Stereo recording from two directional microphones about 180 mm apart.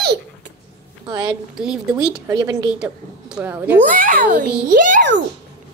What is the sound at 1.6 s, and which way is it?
A woman's voice, 5° right (ahead or behind).